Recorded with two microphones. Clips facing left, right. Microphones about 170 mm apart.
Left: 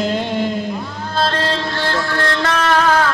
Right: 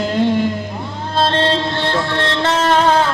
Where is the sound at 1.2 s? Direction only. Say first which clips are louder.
Right 3 dB; 25° right (ahead or behind).